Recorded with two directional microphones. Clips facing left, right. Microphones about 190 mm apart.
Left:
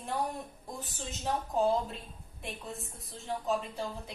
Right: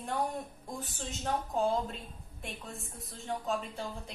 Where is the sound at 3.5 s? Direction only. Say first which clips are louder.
Left 4 dB; 5° left (ahead or behind).